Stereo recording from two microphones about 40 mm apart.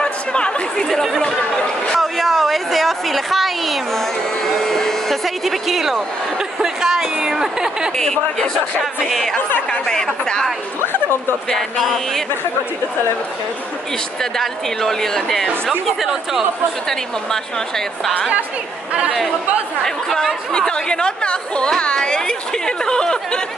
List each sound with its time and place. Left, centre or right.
0.0 s chatter: left
1.9 s a sound: centre
4.6 s a sound: centre
6.6 s a woman's voice: centre
8.0 s speech: centre
9.7 s speech: left
11.8 s speech: centre
14.4 s speech: centre
16.0 s a woman's voice: centre
17.3 s speech: centre
19.8 s speech: centre
20.5 s speech: left